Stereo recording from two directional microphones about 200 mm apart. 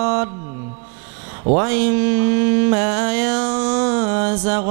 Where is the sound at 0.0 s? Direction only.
15° right (ahead or behind).